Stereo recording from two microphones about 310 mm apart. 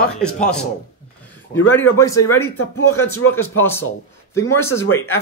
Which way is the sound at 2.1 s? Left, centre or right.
Left.